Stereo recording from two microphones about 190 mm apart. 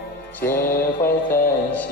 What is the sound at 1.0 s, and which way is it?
Music, 50° left (ahead or behind).